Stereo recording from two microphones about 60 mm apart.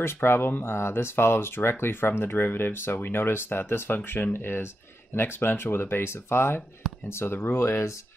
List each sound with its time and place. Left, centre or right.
0.0 s speech: left